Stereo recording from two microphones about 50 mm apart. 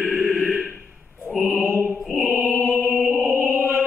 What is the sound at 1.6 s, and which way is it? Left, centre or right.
Mantra, right.